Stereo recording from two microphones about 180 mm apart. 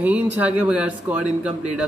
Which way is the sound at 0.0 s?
10° right (ahead or behind).